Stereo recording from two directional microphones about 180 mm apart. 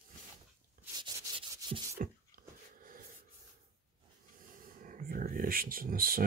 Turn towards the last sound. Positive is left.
turn(degrees=-55)  # may be behind; listen again after turning